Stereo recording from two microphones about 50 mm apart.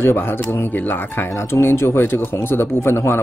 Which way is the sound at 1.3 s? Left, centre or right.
Left.